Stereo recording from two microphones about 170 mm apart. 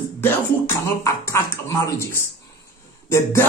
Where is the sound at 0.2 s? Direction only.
15° left (ahead or behind).